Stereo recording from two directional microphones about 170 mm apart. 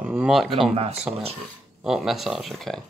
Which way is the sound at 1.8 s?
Centre (ahead or behind).